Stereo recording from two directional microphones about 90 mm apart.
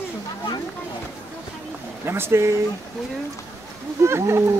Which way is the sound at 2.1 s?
30° right (ahead or behind).